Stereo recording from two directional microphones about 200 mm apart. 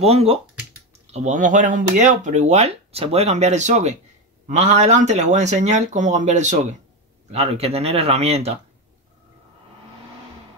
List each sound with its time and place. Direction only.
0.0 s speech: 30° right (ahead or behind)